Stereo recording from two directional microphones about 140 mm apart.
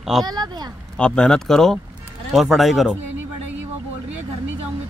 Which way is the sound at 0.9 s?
5° left (ahead or behind).